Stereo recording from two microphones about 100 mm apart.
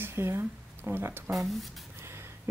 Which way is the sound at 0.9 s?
20° right (ahead or behind).